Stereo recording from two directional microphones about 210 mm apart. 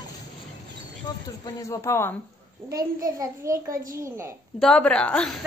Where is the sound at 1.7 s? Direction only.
15° left (ahead or behind).